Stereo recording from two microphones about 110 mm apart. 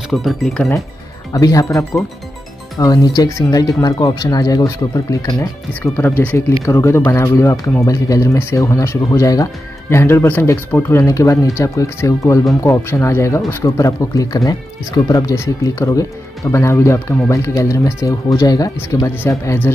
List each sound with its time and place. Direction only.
0.1 s speech: centre (ahead or behind)
1.3 s speech: 30° left (ahead or behind)
5.7 s speech: 15° left (ahead or behind)